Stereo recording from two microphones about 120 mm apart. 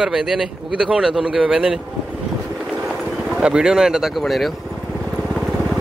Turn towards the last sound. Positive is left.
turn(degrees=0)  # may be behind; listen again after turning